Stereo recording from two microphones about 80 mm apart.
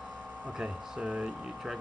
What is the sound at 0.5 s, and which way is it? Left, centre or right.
Speech, centre.